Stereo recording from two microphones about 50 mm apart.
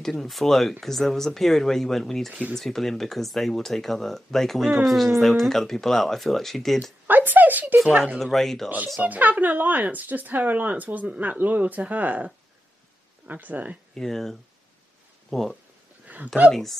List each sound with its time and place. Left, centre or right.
0.0 s speech: centre
7.1 s speech: right
8.2 s speech: centre
8.6 s speech: right
13.3 s speech: right
13.9 s speech: centre
16.1 s a sound: right